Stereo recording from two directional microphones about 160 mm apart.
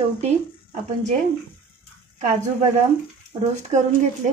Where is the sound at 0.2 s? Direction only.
45° right (ahead or behind).